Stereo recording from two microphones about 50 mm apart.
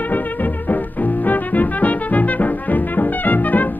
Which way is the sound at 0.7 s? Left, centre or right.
Left.